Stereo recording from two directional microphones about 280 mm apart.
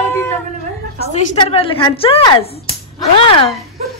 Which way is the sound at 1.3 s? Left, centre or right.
Centre.